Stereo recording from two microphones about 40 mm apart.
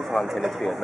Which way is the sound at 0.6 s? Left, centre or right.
Centre.